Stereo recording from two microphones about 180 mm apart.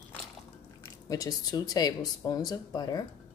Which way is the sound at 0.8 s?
20° left (ahead or behind).